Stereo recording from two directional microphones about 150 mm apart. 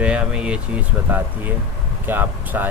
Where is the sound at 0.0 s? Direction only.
5° right (ahead or behind).